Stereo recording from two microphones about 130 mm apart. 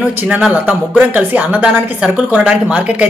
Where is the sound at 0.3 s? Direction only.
10° right (ahead or behind).